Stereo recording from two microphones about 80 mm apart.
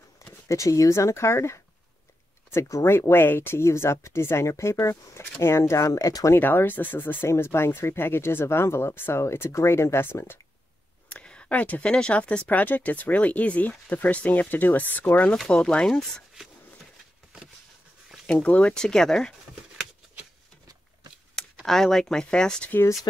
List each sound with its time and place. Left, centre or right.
0.5 s speech: left
6.4 s speech: left
11.1 s speech: centre
15.3 s speech: centre
18.2 s speech: centre
21.6 s speech: centre